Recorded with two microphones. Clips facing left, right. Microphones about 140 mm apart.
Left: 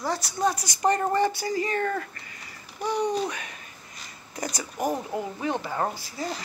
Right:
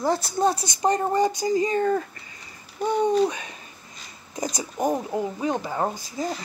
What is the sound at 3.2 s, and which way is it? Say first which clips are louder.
Speech: right 7 dB; 20° right (ahead or behind).